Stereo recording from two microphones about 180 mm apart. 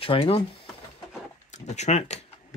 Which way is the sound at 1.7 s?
40° left (ahead or behind).